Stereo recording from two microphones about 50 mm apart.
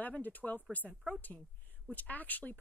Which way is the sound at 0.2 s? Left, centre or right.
Left.